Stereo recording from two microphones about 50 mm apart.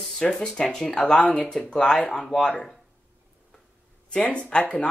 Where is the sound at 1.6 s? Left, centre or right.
Centre.